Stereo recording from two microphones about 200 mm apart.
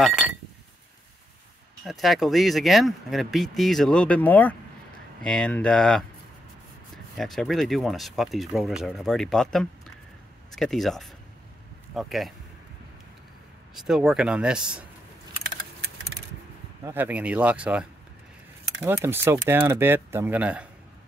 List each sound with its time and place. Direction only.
0.0 s speech: 5° right (ahead or behind)
1.9 s speech: centre (ahead or behind)
7.2 s speech: centre (ahead or behind)
13.7 s speech: 5° right (ahead or behind)
16.8 s speech: 10° right (ahead or behind)